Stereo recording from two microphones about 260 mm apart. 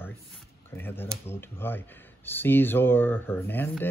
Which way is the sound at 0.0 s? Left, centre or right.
Centre.